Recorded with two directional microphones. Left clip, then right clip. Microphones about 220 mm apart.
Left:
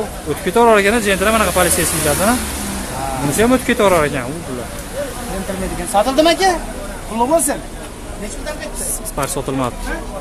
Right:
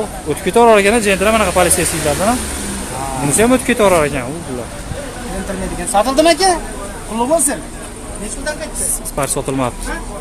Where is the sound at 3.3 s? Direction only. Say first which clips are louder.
Right 2 dB; 10° right (ahead or behind).